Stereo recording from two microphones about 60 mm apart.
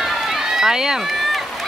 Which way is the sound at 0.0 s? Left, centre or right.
Centre.